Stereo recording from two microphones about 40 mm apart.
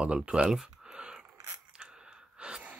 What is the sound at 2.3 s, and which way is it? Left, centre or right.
Gasp, right.